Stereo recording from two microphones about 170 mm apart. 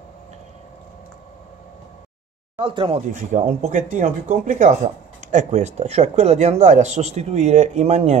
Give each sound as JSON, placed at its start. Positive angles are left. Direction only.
{"t": 2.6, "sound": "speech", "side_deg": -30}
{"t": 3.1, "sound": "speech", "side_deg": -45}